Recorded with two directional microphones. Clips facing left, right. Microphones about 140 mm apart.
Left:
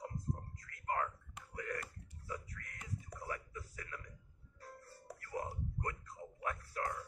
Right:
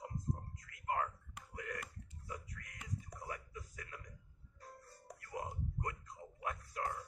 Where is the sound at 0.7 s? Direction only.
10° right (ahead or behind).